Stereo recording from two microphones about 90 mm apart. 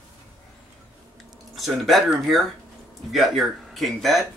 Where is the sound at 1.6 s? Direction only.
Centre (ahead or behind).